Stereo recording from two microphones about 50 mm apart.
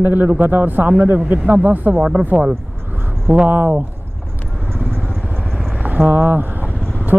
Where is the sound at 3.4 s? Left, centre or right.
Right.